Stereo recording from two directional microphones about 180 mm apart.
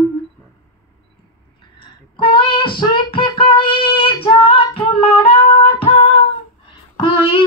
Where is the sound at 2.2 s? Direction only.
30° left (ahead or behind).